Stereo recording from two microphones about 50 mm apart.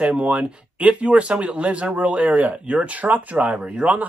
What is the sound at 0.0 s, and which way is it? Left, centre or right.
A man's voice, right.